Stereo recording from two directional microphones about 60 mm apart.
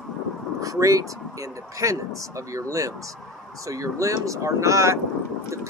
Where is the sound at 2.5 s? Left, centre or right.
Right.